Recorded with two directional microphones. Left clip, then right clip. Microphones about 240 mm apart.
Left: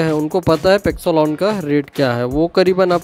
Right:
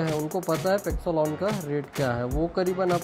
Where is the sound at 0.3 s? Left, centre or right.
Left.